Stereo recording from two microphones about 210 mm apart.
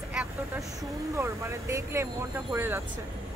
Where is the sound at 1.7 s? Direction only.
15° right (ahead or behind).